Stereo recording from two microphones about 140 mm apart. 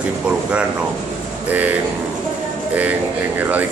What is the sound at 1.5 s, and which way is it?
Speech, 10° right (ahead or behind).